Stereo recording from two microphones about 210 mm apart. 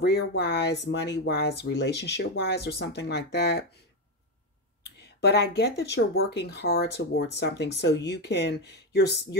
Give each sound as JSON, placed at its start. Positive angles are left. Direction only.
{"t": 0.0, "sound": "speech", "side_deg": 50}
{"t": 5.2, "sound": "speech", "side_deg": 50}